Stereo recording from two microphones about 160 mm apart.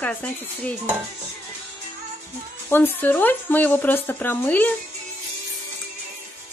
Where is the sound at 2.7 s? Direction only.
10° left (ahead or behind).